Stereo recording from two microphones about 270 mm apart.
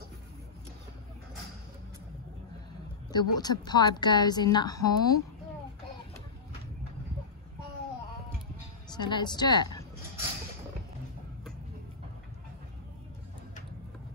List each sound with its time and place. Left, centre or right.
3.1 s a woman's voice: centre
8.9 s speech: centre